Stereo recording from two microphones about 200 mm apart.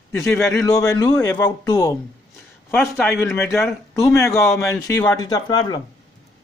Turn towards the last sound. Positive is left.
turn(degrees=20)  # may be behind; listen again after turning